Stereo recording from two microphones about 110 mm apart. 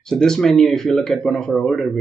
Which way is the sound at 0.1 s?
5° left (ahead or behind).